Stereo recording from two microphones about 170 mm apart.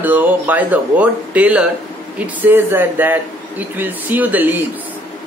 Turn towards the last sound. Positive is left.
turn(degrees=-10)  # may be behind; listen again after turning